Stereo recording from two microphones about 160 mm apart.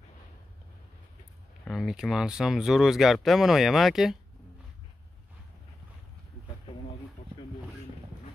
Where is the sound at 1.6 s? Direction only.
Centre (ahead or behind).